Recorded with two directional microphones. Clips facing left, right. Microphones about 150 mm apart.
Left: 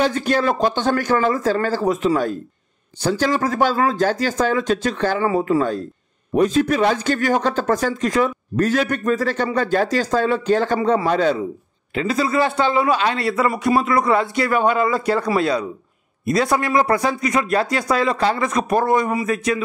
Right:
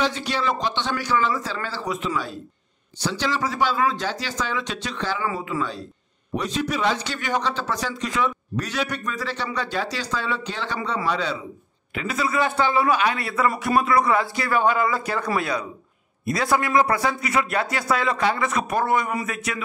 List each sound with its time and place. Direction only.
0.0 s a man's voice: 50° left (ahead or behind)
11.9 s a man's voice: 30° left (ahead or behind)
12.5 s a man's voice: 20° left (ahead or behind)